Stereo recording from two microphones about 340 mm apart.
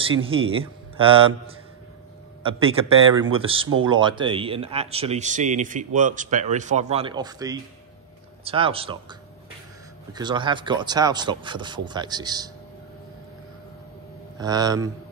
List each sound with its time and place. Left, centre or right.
0.2 s speech: centre
2.4 s speech: centre
10.1 s speech: centre
14.4 s speech: centre